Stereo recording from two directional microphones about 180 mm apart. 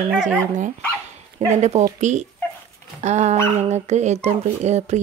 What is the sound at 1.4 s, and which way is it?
Speech, 40° right (ahead or behind).